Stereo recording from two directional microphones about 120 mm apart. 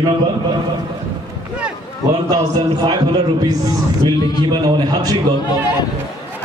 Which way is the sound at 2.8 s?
35° right (ahead or behind).